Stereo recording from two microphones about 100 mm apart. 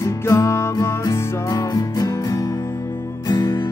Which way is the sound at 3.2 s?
50° left (ahead or behind).